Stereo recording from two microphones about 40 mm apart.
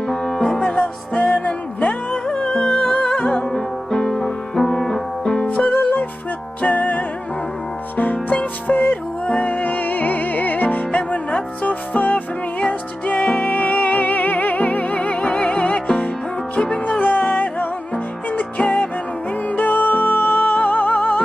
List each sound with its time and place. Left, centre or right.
0.1 s music: centre
0.7 s music: left
2.2 s music: centre
3.5 s music: centre
5.7 s music: left
9.2 s music: left
17.0 s music: left
19.5 s music: left